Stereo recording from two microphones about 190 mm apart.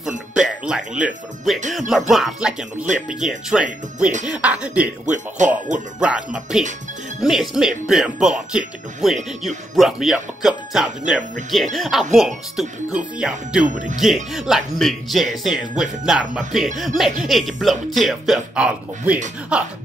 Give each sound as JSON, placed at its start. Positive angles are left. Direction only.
{"t": 0.3, "sound": "speech", "side_deg": -5}
{"t": 5.4, "sound": "speech", "side_deg": -40}
{"t": 5.9, "sound": "speech", "side_deg": -5}
{"t": 13.7, "sound": "speech", "side_deg": -40}
{"t": 13.9, "sound": "speech", "side_deg": 0}